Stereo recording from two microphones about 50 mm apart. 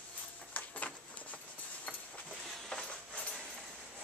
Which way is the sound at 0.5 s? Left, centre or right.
Left.